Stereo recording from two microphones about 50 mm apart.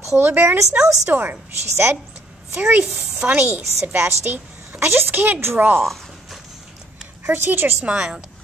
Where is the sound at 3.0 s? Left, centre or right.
Right.